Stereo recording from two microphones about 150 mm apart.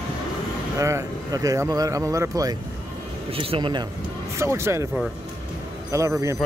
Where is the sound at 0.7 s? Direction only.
20° right (ahead or behind).